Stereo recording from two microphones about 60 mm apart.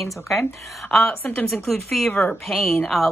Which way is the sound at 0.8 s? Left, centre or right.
Centre.